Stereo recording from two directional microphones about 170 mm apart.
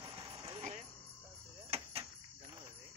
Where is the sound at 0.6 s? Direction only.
45° right (ahead or behind).